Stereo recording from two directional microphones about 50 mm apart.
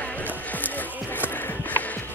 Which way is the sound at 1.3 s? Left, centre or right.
Left.